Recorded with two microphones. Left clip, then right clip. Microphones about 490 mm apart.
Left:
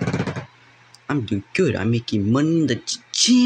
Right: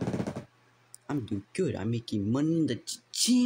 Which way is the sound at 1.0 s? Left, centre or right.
Right.